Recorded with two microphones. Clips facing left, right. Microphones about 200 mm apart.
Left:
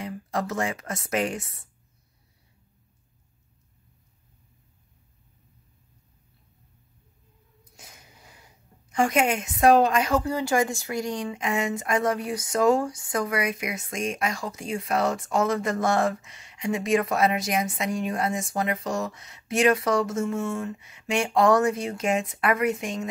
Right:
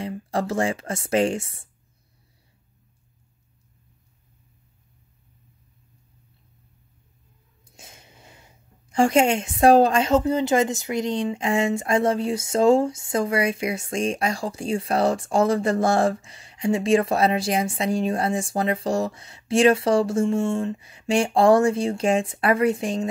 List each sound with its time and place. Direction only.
0.0 s speech: 30° right (ahead or behind)
7.7 s a sound: 25° right (ahead or behind)
8.9 s a woman's voice: 30° right (ahead or behind)